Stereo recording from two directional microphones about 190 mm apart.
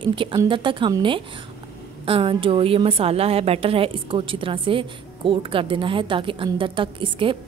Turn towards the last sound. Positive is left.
turn(degrees=-25)  # may be behind; listen again after turning